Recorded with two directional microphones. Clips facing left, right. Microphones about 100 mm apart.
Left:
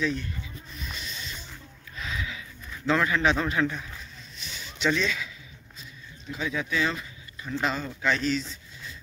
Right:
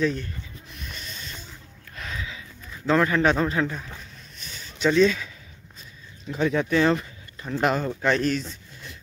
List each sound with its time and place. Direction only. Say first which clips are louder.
0.0 s speech: right 4 dB; 45° right (ahead or behind)
0.7 s music: left 1 dB; 50° right (ahead or behind)
2.9 s speech: right 3 dB; 40° right (ahead or behind)
3.3 s speech: right 2 dB; 30° right (ahead or behind)
4.4 s a sound: right 4 dB; 45° right (ahead or behind)
6.3 s speech: right 7 dB; 45° right (ahead or behind)